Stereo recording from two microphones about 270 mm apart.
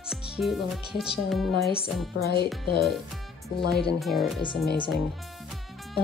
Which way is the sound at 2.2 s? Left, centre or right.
Left.